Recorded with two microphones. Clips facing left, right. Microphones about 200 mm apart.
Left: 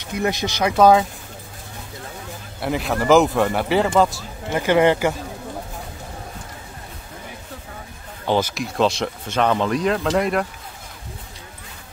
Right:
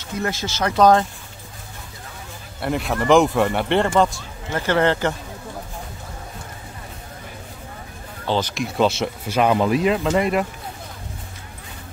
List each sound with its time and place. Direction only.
0.0 s speech: 15° left (ahead or behind)
2.6 s speech: centre (ahead or behind)
8.3 s speech: 10° left (ahead or behind)
8.6 s speech: centre (ahead or behind)